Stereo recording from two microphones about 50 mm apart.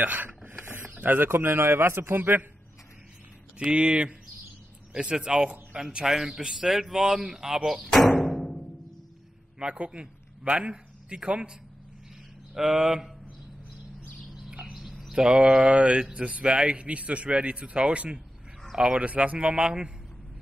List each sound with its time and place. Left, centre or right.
0.0 s a sound: right
0.4 s mechanisms: right
0.8 s a man's voice: right
3.5 s a man's voice: right
8.1 s music: centre
9.6 s a man's voice: centre
12.5 s speech: centre
14.7 s a sound: centre
15.1 s a man's voice: centre